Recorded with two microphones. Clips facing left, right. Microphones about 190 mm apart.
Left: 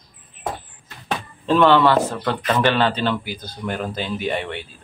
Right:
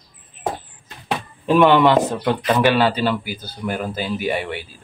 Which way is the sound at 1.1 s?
15° right (ahead or behind).